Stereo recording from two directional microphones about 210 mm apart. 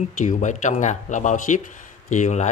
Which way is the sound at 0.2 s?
35° left (ahead or behind).